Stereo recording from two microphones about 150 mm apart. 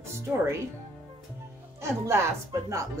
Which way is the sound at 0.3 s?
5° right (ahead or behind).